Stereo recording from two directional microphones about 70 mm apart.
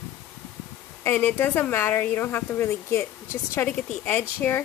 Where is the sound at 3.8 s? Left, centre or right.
Left.